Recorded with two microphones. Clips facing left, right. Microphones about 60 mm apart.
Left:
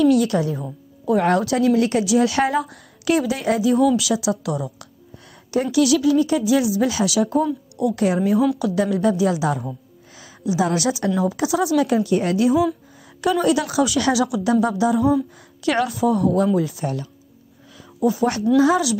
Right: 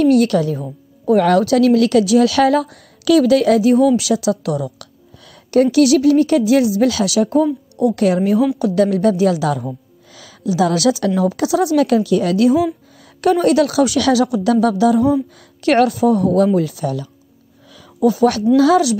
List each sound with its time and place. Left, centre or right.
0.0 s a woman's voice: right
2.0 s a woman's voice: right
4.2 s a woman's voice: right
13.2 s a woman's voice: right
14.1 s a woman's voice: right
16.5 s a woman's voice: right
18.0 s a woman's voice: right